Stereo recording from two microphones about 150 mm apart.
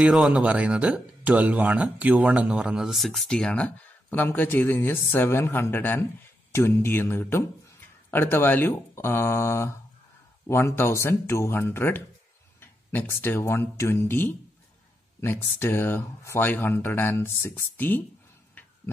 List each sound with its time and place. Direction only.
0.0 s speech: 5° right (ahead or behind); by 18.0 s 15° left (ahead or behind)